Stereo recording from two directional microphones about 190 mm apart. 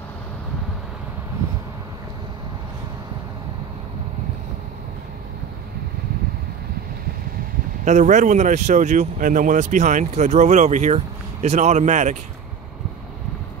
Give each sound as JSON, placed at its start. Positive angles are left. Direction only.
{"t": 7.8, "sound": "speech", "side_deg": -40}